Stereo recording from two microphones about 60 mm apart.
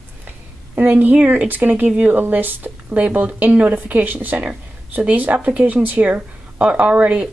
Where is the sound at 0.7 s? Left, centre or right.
Right.